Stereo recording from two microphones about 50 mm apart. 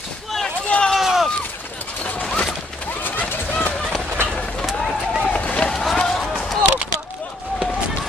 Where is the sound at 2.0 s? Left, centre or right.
Left.